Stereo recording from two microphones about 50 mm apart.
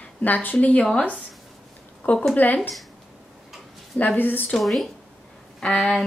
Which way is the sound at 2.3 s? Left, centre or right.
Left.